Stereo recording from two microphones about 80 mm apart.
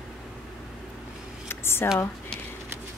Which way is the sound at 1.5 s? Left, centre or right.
Left.